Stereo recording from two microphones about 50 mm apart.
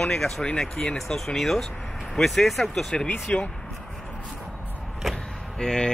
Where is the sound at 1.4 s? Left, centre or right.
Centre.